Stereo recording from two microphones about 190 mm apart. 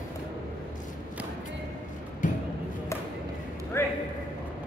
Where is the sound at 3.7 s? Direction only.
15° left (ahead or behind).